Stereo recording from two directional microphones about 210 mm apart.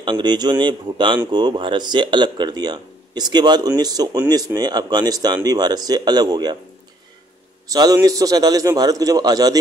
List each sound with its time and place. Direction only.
0.0 s speech: 20° right (ahead or behind)
7.6 s a man's voice: 15° right (ahead or behind)